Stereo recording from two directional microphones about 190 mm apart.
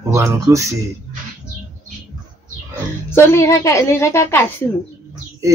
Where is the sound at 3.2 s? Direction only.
15° left (ahead or behind).